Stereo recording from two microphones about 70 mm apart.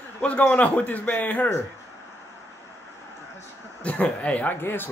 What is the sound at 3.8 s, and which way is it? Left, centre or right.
Speech, centre.